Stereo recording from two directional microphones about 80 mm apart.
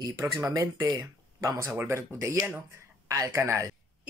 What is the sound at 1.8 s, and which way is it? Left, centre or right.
Speech, right.